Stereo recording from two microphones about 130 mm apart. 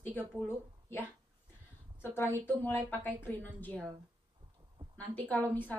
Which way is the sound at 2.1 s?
15° left (ahead or behind).